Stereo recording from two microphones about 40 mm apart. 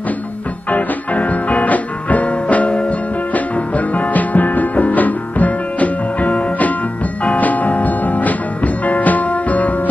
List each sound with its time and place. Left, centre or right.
0.7 s music: left